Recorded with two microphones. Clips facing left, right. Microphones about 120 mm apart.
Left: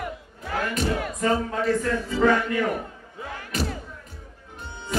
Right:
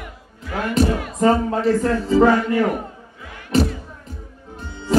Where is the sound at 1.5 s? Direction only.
35° right (ahead or behind).